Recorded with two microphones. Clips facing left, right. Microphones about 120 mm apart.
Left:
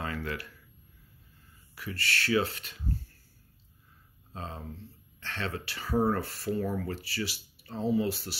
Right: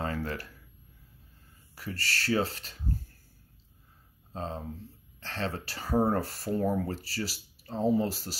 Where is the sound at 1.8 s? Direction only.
40° right (ahead or behind).